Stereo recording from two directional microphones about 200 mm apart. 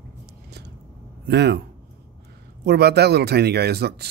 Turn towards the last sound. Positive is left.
turn(degrees=-55)  # may be behind; listen again after turning